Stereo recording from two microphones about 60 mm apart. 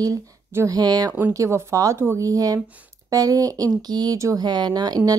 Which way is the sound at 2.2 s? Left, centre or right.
Right.